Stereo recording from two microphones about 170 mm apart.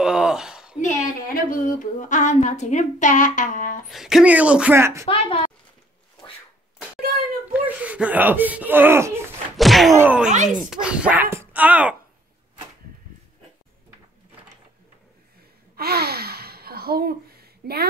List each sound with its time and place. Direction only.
0.0 s a sound: 5° right (ahead or behind)
0.7 s speech: 50° left (ahead or behind)
3.9 s speech: centre (ahead or behind)
5.0 s a woman's voice: 35° left (ahead or behind)
7.5 s speech: 10° right (ahead or behind)
9.6 s a sound: centre (ahead or behind)
9.9 s speech: 10° right (ahead or behind)
10.3 s speech: 45° right (ahead or behind)
10.6 s speech: 5° right (ahead or behind)
15.7 s gasp: 65° right (ahead or behind)